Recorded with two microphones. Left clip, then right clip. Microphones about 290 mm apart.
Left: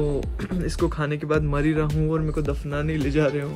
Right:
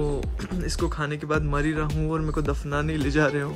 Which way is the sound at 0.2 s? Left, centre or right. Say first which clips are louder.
Left 3 dB; centre.